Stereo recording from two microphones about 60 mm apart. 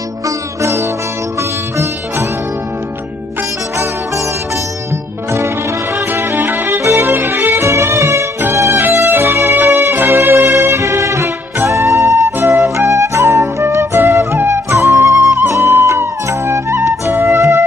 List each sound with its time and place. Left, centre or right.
0.6 s music: right
5.9 s music: right
6.8 s music: right
7.1 s music: right
10.5 s music: right
12.4 s flute: right
15.5 s music: right
17.1 s flute: right
17.4 s music: right